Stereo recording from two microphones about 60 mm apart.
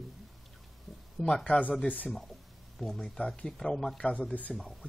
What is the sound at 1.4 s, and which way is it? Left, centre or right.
Speech, left.